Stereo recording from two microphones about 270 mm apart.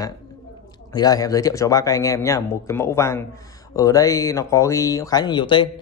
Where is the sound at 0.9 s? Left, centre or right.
Centre.